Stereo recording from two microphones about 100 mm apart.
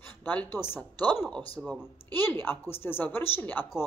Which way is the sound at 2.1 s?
20° left (ahead or behind).